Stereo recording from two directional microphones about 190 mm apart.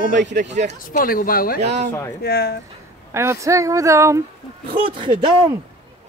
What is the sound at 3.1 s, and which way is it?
Speech, 15° right (ahead or behind).